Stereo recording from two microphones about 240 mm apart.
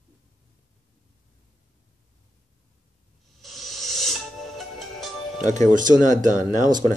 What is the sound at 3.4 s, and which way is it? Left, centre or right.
Music, centre.